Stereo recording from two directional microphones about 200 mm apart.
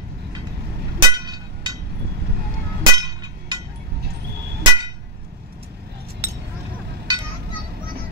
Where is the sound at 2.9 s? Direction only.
20° right (ahead or behind).